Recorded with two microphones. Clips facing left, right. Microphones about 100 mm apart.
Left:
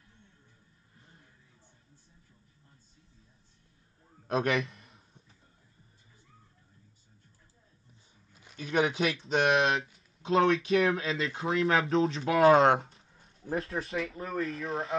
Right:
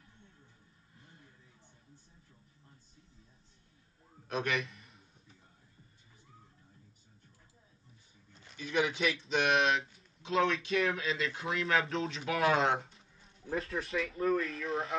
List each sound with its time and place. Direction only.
4.3 s speech: 40° left (ahead or behind)
8.3 s a sound: 10° left (ahead or behind)
8.5 s speech: 45° left (ahead or behind)